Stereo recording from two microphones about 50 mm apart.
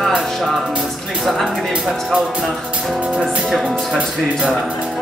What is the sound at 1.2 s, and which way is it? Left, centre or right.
Music, centre.